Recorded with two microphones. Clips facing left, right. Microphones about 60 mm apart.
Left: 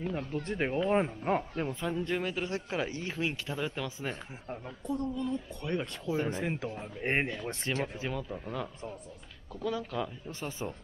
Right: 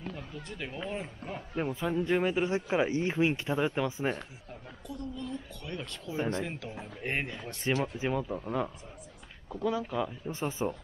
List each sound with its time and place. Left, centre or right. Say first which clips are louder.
0.3 s a woman's voice: left 8 dB; left
1.5 s speech: right 2 dB; centre; by 4.2 s right
4.5 s a woman's voice: left 12 dB; left
5.1 s speech: left 5 dB; left
7.7 s speech: right 5 dB; centre